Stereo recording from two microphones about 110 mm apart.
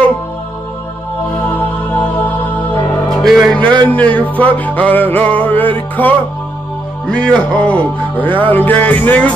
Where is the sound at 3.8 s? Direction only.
15° left (ahead or behind).